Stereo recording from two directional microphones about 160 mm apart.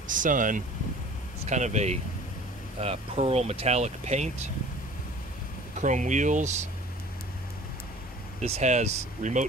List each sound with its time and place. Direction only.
0.0 s speech: 55° right (ahead or behind)
5.8 s speech: 50° right (ahead or behind)
8.4 s speech: 45° right (ahead or behind)